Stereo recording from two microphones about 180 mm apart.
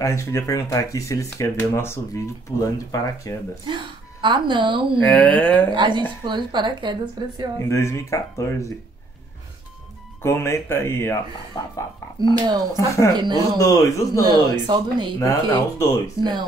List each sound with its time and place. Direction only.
0.0 s speech: 15° left (ahead or behind)
3.6 s speech: 25° right (ahead or behind)
5.0 s speech: 10° left (ahead or behind)
5.7 s a woman's voice: 25° right (ahead or behind)
7.5 s speech: 15° left (ahead or behind)
10.2 s speech: 15° left (ahead or behind)
12.2 s a woman's voice: 20° right (ahead or behind)
12.7 s speech: 15° left (ahead or behind)
13.1 s a woman's voice: 25° right (ahead or behind)
13.6 s speech: 15° left (ahead or behind)
14.2 s a woman's voice: 25° right (ahead or behind)
15.1 s speech: 15° left (ahead or behind)
16.2 s a woman's voice: 25° right (ahead or behind)